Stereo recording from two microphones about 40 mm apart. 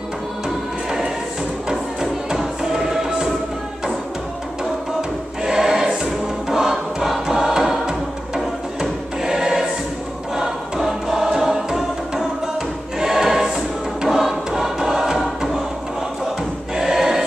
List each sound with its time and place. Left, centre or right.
0.8 s choir: centre
1.7 s music: centre
5.4 s choir: centre
6.5 s music: centre
9.2 s choir: centre
10.3 s music: centre
16.7 s choir: centre